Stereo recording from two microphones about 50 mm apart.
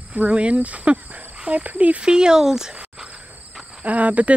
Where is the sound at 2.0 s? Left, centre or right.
Centre.